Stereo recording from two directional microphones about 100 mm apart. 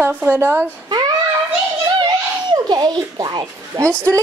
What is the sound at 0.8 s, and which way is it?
Child singing, 40° right (ahead or behind).